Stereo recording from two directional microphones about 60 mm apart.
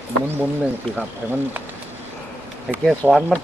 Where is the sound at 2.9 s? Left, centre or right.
Centre.